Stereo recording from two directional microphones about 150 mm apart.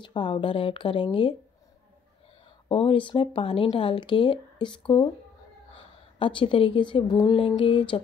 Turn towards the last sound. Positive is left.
turn(degrees=35)  # may be behind; listen again after turning